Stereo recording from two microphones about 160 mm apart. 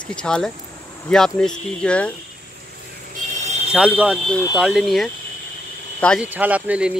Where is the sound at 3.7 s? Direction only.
5° right (ahead or behind).